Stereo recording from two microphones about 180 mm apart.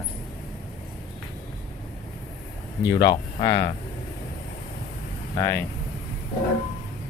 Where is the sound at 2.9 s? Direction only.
25° left (ahead or behind).